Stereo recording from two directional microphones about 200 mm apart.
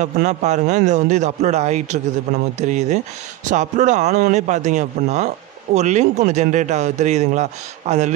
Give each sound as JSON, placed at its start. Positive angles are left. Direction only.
{"t": 0.0, "sound": "a man's voice", "side_deg": -35}